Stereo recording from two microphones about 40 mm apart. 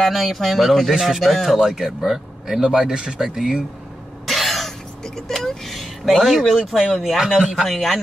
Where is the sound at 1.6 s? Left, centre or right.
Centre.